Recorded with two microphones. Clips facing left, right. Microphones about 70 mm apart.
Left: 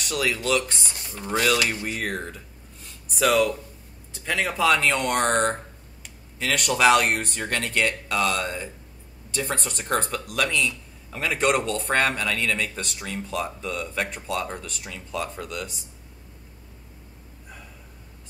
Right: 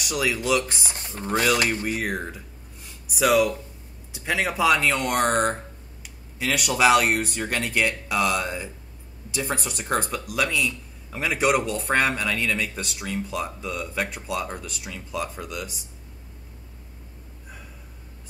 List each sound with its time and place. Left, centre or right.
0.0 s speech: centre
0.9 s speech: right
1.3 s speech: centre
1.9 s speech: centre